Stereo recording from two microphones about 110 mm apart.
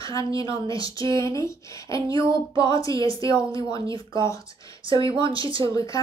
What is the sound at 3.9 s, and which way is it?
Speech, 45° right (ahead or behind).